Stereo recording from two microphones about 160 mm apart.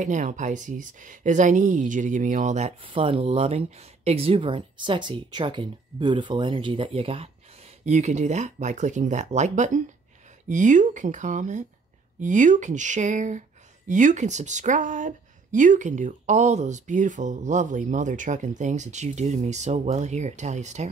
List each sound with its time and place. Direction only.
0.0 s speech: 50° right (ahead or behind)
2.8 s speech: 35° right (ahead or behind)